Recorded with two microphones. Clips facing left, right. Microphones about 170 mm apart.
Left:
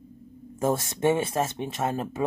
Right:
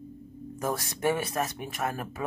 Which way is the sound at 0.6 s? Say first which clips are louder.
Left 5 dB; 25° left (ahead or behind).